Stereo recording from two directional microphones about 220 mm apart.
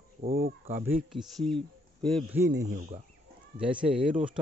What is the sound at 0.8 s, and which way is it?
Speech, 5° right (ahead or behind).